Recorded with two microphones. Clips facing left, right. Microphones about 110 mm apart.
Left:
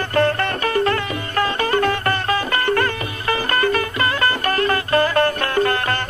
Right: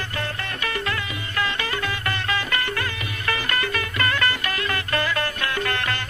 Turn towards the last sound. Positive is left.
turn(degrees=40)  # may be behind; listen again after turning